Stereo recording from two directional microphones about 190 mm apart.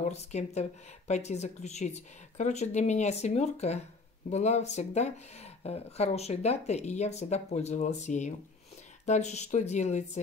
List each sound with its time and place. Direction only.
0.1 s speech: 35° left (ahead or behind)